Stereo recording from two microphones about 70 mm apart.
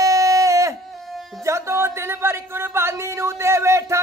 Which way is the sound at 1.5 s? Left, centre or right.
Right.